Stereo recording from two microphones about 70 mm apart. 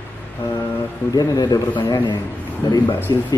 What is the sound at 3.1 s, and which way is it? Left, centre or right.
Speech, left.